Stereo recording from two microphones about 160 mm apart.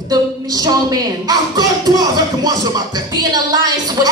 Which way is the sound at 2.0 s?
25° right (ahead or behind).